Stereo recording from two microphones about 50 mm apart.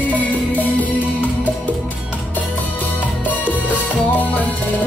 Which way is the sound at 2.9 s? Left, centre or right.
Left.